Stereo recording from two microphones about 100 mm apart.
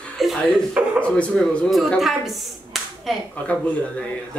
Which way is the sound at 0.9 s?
15° left (ahead or behind).